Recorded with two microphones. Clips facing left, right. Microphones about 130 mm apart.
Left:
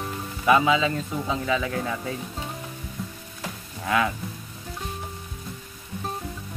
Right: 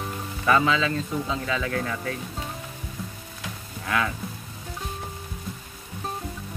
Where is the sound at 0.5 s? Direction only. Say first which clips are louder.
Left 2 dB; 15° left (ahead or behind).